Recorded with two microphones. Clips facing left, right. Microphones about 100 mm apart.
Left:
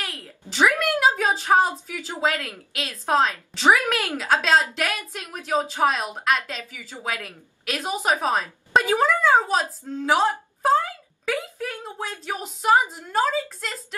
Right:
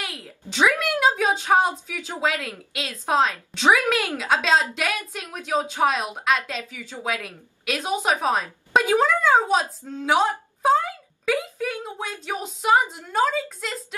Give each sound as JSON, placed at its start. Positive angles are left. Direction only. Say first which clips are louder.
{"t": 0.0, "sound": "a sound", "louder": "even", "side_deg": 0}
{"t": 1.6, "sound": "speech", "louder": "even", "side_deg": 0}
{"t": 2.3, "sound": "a woman's voice", "louder": "even", "side_deg": -15}
{"t": 3.1, "sound": "a woman's voice", "louder": "even", "side_deg": 0}
{"t": 7.6, "sound": "a woman's voice", "louder": "right 1 dB", "side_deg": 0}